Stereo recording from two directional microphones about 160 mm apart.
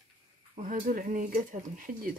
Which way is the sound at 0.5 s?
55° right (ahead or behind).